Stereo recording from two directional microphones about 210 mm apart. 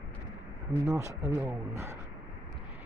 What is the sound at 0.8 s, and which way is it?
Speech, 15° right (ahead or behind).